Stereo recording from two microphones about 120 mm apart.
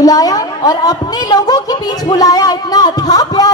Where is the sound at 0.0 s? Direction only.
30° left (ahead or behind).